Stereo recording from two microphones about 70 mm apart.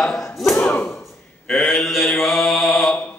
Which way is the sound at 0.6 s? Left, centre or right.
Left.